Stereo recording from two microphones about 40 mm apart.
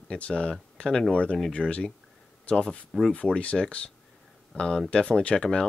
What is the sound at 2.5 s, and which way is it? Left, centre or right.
Speech, centre.